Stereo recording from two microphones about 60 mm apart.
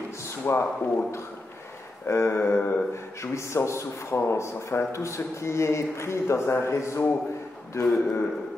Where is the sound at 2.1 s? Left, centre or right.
Left.